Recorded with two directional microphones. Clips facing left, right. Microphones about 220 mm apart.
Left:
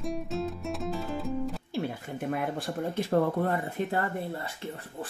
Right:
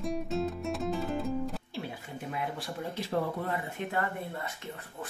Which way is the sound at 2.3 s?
50° left (ahead or behind).